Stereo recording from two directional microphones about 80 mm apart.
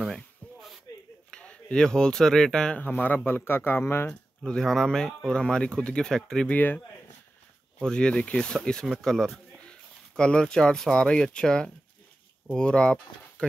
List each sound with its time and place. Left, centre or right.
0.0 s a sound: centre
1.3 s speech: centre
2.8 s speech: left
4.5 s speech: centre
6.5 s speech: left
7.8 s speech: centre